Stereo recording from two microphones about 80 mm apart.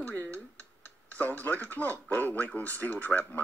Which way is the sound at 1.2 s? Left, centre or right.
Left.